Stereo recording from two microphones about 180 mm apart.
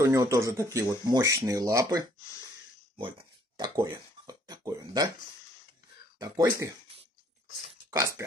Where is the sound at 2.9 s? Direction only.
30° right (ahead or behind).